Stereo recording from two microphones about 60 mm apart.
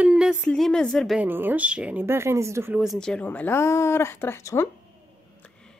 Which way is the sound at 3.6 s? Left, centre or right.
Left.